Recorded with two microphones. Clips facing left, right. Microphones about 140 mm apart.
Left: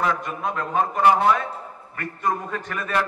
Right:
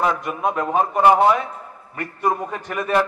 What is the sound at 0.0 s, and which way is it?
A man's voice, 20° right (ahead or behind).